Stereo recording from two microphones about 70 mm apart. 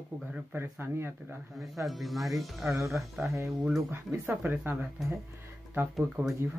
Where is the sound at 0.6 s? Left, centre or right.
Right.